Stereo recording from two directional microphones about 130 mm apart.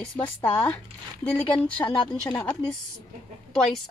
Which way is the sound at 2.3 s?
15° left (ahead or behind).